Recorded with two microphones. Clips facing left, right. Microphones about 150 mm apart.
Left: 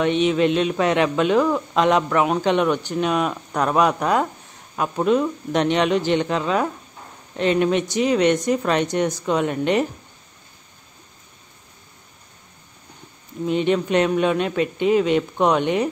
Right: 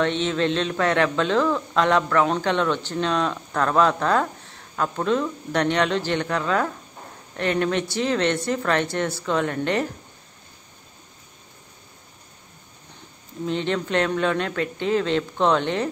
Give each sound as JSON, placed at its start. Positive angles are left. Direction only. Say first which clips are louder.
{"t": 0.0, "sound": "speech", "louder": "left 4 dB", "side_deg": 15}
{"t": 13.5, "sound": "speech", "louder": "left 5 dB", "side_deg": 15}